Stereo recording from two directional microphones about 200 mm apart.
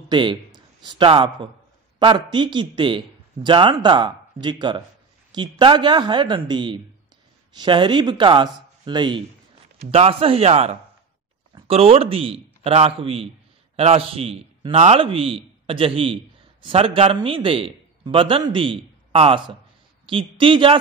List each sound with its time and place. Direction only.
0.1 s a man's voice: 25° right (ahead or behind)